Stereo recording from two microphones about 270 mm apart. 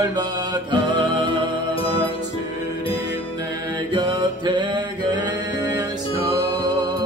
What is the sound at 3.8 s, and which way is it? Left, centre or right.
Music, centre.